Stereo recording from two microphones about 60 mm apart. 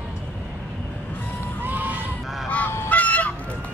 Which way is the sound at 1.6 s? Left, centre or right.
Right.